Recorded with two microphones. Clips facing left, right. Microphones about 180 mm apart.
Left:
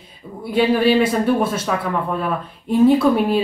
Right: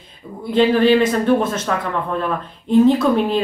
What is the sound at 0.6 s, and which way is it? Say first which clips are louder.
A woman's voice: right 2 dB; 10° left (ahead or behind).